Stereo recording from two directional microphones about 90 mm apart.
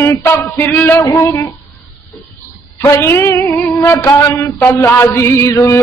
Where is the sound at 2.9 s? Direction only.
30° left (ahead or behind).